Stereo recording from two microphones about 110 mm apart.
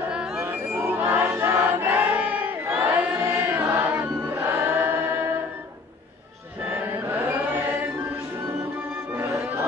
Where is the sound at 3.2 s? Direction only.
20° right (ahead or behind).